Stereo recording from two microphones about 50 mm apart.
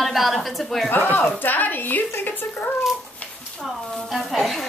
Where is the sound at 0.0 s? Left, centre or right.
Centre.